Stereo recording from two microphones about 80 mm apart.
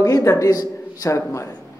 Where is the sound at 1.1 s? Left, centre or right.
Left.